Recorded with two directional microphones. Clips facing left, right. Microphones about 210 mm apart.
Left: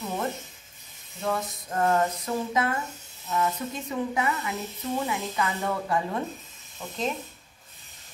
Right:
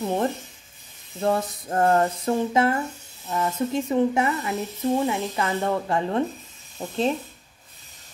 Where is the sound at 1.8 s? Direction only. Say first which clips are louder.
Right 4 dB; 30° right (ahead or behind).